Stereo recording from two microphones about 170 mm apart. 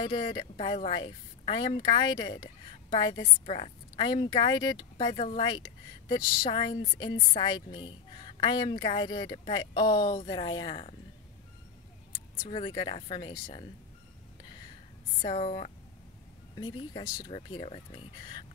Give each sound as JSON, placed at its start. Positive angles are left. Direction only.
{"t": 0.0, "sound": "a woman's voice", "side_deg": 30}
{"t": 12.4, "sound": "a woman's voice", "side_deg": 30}
{"t": 15.2, "sound": "a woman's voice", "side_deg": 35}